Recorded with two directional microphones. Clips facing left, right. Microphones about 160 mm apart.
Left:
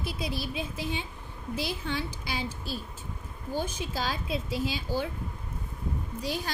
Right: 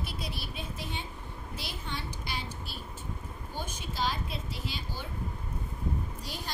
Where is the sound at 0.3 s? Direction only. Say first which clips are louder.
Left 6 dB; 90° left.